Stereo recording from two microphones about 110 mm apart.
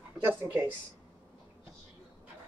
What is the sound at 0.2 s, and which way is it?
Speech, 15° right (ahead or behind).